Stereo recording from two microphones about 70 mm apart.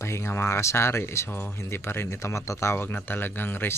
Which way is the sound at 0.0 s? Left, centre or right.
Left.